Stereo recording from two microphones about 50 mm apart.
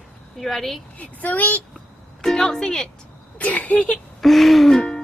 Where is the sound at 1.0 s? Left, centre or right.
Left.